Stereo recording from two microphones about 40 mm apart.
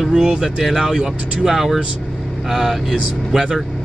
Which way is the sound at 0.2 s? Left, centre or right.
Right.